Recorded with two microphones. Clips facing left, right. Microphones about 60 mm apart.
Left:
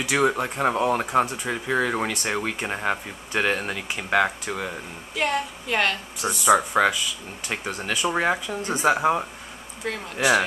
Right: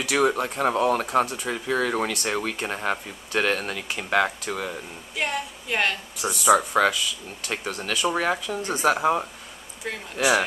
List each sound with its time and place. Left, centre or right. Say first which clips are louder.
0.1 s speech: even; centre
5.1 s speech: left 3 dB; centre
7.4 s speech: left 1 dB; centre
8.9 s speech: left 1 dB; centre
9.8 s speech: left 3 dB; centre